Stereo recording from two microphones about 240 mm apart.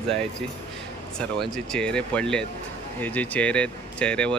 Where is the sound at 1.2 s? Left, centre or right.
Centre.